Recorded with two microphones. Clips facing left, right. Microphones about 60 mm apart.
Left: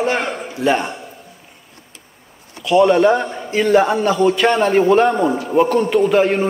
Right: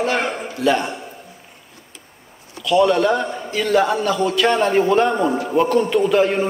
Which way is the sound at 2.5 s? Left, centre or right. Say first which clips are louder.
Left 2 dB; left.